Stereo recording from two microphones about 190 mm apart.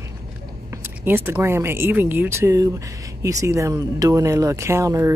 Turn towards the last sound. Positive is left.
turn(degrees=-15)  # may be behind; listen again after turning